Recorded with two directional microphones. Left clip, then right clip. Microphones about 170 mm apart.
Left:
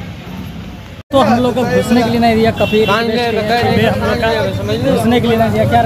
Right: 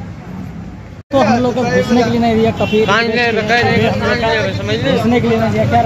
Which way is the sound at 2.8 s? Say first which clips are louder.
Right 1 dB; 35° left (ahead or behind).